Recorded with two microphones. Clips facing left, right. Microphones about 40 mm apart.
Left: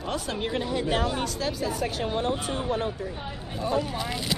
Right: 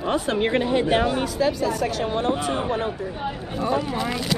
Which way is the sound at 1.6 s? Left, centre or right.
Centre.